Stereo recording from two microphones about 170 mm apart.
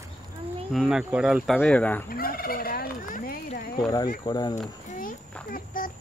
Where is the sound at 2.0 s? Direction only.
60° left (ahead or behind).